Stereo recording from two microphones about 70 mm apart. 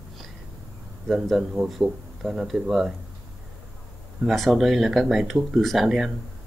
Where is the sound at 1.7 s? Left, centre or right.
Centre.